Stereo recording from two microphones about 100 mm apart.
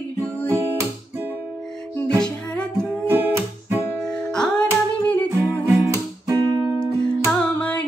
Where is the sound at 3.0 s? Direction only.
20° right (ahead or behind).